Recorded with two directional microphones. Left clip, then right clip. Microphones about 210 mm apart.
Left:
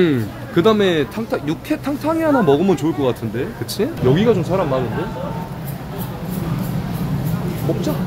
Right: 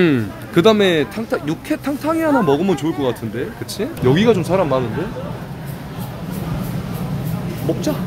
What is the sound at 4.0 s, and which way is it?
Speech, 25° right (ahead or behind).